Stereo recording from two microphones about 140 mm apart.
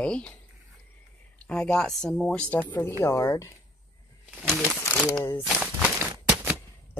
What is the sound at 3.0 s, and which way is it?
Speech, 25° left (ahead or behind).